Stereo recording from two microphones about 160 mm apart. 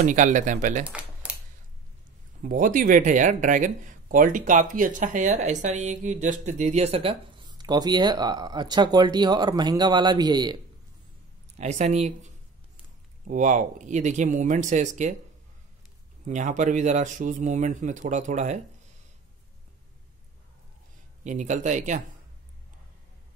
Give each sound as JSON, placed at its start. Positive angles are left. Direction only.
{"t": 0.0, "sound": "speech", "side_deg": -55}
{"t": 0.8, "sound": "typing", "side_deg": -5}
{"t": 2.4, "sound": "speech", "side_deg": -60}
{"t": 11.5, "sound": "speech", "side_deg": -45}
{"t": 13.3, "sound": "speech", "side_deg": -50}
{"t": 16.3, "sound": "speech", "side_deg": -50}
{"t": 21.2, "sound": "speech", "side_deg": -50}